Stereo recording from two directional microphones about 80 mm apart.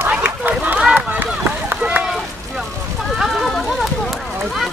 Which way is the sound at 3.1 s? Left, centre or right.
Centre.